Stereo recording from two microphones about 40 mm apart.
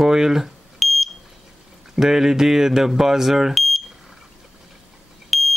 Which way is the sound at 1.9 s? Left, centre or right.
Centre.